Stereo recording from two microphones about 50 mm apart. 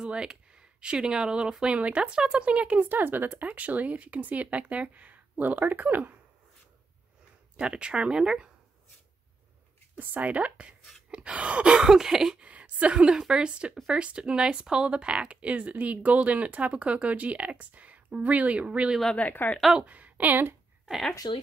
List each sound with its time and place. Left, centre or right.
0.0 s speech: centre
2.8 s speech: right
7.5 s speech: centre
9.9 s speech: right
11.8 s a sound: centre
12.4 s a woman's voice: right
19.1 s a woman's voice: left
19.9 s speech: right